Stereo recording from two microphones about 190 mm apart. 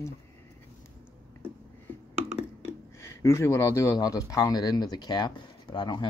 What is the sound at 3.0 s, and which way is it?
Speech, 15° left (ahead or behind).